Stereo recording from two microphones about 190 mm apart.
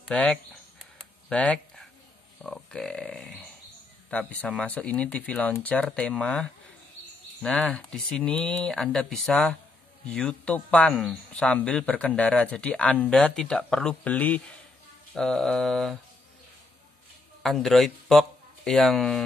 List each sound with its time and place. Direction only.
0.1 s speech: 5° left (ahead or behind)
1.3 s a sound: 5° left (ahead or behind)
2.4 s speech: centre (ahead or behind)
17.4 s speech: centre (ahead or behind)